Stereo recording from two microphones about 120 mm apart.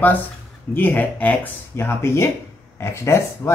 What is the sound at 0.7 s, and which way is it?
Speech, 15° left (ahead or behind).